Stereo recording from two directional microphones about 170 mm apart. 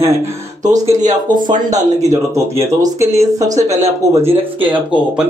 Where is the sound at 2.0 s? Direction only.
20° right (ahead or behind).